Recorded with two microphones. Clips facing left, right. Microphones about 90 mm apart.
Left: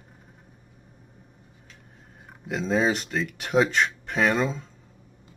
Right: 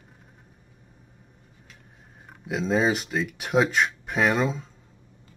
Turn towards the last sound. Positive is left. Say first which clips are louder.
# even
turn(degrees=0)  # may be behind; listen again after turning